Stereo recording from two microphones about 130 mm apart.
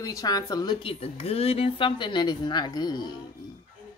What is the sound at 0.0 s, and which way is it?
Speech, 30° left (ahead or behind).